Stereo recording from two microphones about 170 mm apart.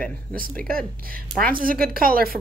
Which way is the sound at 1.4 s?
55° right (ahead or behind).